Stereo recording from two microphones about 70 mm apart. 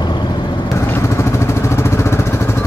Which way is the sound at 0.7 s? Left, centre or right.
Left.